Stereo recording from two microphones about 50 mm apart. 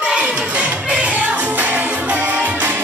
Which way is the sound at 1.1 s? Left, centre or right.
Right.